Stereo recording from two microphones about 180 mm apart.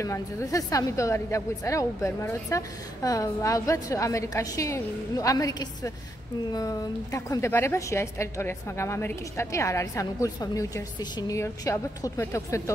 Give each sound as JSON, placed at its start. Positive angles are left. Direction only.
{"t": 0.0, "sound": "a woman's voice", "side_deg": 20}